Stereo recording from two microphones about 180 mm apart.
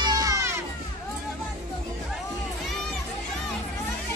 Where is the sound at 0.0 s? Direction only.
20° right (ahead or behind).